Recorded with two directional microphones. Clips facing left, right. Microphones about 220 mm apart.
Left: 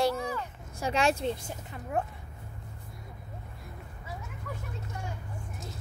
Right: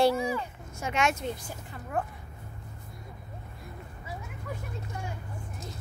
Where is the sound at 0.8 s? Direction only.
35° left (ahead or behind).